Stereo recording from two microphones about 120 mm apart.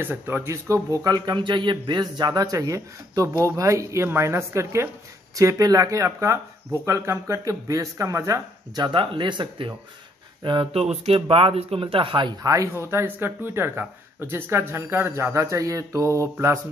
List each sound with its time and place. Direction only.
0.0 s speech: 20° right (ahead or behind)
8.8 s speech: 45° right (ahead or behind)
10.7 s speech: 60° right (ahead or behind)
12.4 s speech: 25° right (ahead or behind)